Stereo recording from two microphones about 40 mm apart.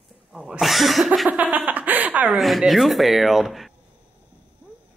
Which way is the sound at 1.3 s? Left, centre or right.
Right.